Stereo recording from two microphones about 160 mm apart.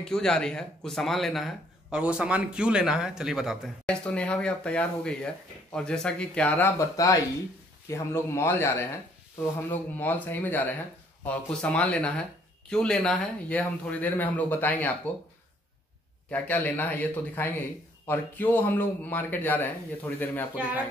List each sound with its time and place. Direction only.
0.0 s speech: 5° left (ahead or behind)
7.9 s speech: 15° left (ahead or behind)
16.3 s speech: 10° left (ahead or behind)